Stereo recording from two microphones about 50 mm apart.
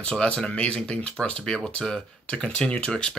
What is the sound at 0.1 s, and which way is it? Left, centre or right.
Speech, centre.